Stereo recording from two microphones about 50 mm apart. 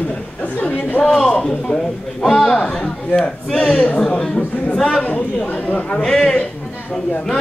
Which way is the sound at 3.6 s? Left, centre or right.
Centre.